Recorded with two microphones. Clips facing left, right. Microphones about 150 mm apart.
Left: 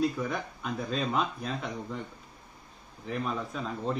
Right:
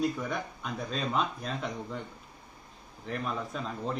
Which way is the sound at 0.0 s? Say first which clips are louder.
Left 1 dB; centre (ahead or behind).